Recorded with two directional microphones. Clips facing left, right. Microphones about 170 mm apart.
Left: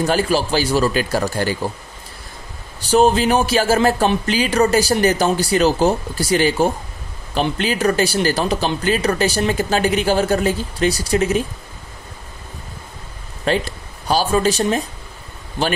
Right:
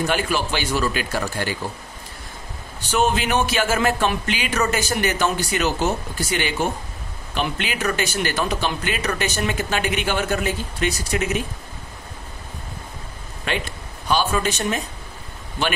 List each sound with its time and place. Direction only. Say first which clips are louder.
0.0 s speech: left 5 dB; 35° left (ahead or behind)
2.8 s speech: left 7 dB; 35° left (ahead or behind)
13.5 s speech: left 7 dB; 35° left (ahead or behind)